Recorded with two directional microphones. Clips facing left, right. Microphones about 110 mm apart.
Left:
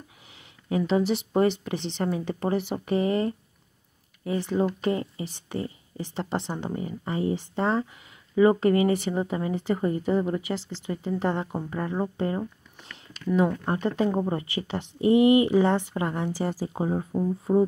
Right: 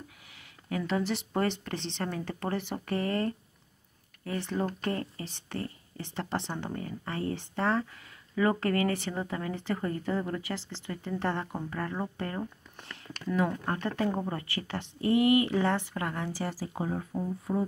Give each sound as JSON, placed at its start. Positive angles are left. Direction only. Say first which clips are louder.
{"t": 0.7, "sound": "speech", "louder": "left 7 dB", "side_deg": 20}